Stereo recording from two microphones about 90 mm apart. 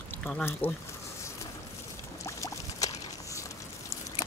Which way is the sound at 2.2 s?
35° left (ahead or behind).